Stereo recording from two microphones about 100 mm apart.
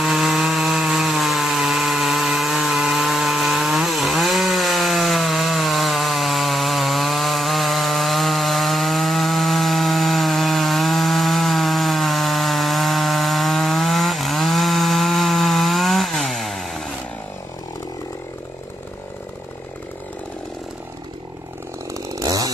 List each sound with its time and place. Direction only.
0.0 s chainsaw: centre (ahead or behind)
22.2 s chainsaw: 35° right (ahead or behind)